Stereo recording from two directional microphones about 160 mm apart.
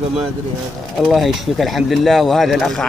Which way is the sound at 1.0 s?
Centre (ahead or behind).